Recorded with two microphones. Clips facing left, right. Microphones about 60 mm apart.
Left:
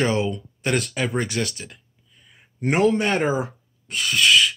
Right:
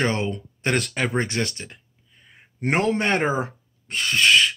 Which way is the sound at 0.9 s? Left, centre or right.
Right.